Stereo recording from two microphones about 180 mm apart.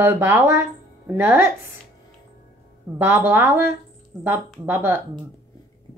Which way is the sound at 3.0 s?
10° right (ahead or behind).